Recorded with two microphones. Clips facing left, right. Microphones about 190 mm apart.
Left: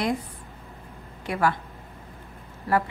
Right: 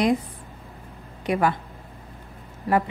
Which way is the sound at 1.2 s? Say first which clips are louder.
Right 3 dB; 20° right (ahead or behind).